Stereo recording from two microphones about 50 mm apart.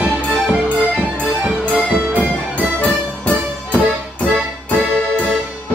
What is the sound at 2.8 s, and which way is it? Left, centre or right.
Music, left.